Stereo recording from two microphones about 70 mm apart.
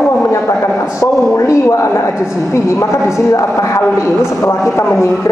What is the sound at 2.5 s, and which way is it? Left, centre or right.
A man's voice, left.